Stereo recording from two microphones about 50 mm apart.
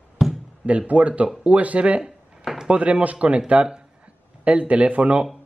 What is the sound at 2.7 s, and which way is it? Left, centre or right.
Speech, right.